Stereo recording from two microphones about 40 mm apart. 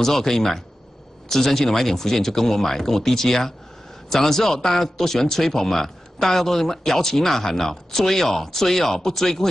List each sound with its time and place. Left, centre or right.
0.0 s speech: centre